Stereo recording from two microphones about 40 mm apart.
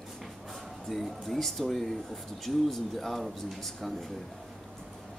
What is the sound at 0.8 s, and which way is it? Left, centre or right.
A woman's voice, centre.